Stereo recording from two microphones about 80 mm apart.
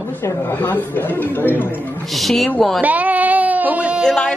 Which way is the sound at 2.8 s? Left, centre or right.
Centre.